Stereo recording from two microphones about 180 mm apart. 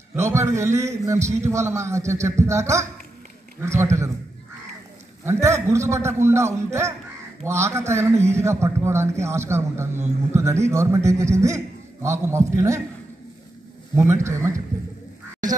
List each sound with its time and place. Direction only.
0.1 s a man's voice: 15° right (ahead or behind)
5.2 s a man's voice: 15° right (ahead or behind)
13.9 s a man's voice: 15° right (ahead or behind)